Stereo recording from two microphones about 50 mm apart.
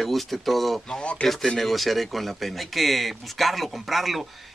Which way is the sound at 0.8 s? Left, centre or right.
Centre.